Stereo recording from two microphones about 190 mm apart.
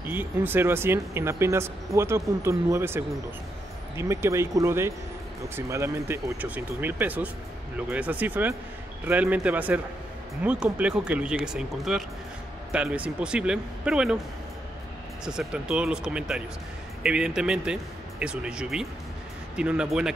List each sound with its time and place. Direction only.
0.1 s speech: 10° right (ahead or behind)
15.2 s speech: 5° right (ahead or behind)